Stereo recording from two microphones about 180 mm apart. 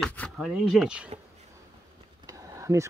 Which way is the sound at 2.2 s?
15° right (ahead or behind).